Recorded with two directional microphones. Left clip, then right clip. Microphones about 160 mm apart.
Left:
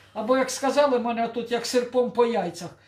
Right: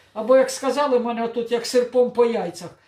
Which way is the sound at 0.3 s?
5° right (ahead or behind).